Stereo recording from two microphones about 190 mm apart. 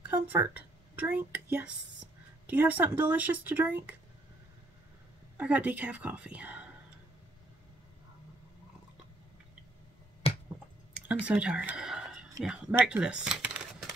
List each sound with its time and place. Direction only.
0.1 s speech: 10° right (ahead or behind)
5.4 s speech: 10° right (ahead or behind)
10.2 s finger snapping: 30° left (ahead or behind)
11.2 s a sound: 5° right (ahead or behind)